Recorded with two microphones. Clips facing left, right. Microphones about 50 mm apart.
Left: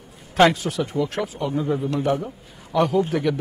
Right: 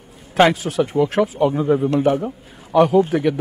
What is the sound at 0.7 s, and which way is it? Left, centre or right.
A man's voice, right.